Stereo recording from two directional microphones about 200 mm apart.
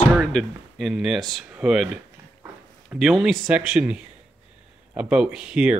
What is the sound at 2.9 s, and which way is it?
Speech, centre (ahead or behind).